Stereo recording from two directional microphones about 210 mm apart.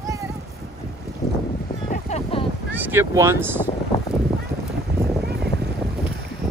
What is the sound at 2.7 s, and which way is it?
Speech, 10° right (ahead or behind).